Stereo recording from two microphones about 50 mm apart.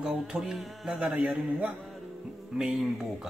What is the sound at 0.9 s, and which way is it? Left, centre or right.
Speech, right.